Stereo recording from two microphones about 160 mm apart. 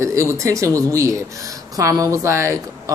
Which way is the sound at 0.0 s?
20° right (ahead or behind).